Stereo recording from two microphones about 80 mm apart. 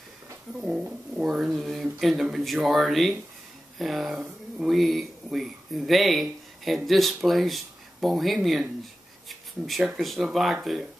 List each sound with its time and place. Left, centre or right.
0.6 s speech: centre